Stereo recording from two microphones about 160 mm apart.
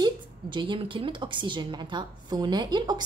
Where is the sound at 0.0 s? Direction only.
30° right (ahead or behind).